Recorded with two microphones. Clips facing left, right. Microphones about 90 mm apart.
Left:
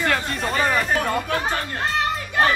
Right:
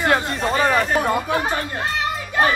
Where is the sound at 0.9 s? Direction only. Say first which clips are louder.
Right 3 dB; 15° right (ahead or behind).